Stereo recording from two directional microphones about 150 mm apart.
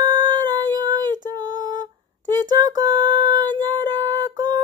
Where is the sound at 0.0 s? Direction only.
25° right (ahead or behind).